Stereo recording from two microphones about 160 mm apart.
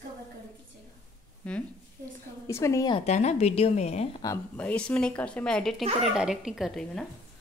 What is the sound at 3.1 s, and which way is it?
A woman's voice, 45° left (ahead or behind).